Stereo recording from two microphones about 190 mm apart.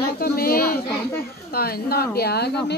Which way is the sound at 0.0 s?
55° left (ahead or behind).